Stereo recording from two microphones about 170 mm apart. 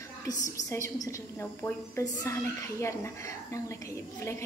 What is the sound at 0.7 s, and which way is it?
A woman's voice, 20° left (ahead or behind).